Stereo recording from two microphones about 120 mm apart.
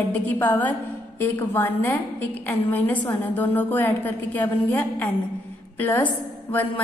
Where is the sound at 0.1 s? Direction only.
15° left (ahead or behind).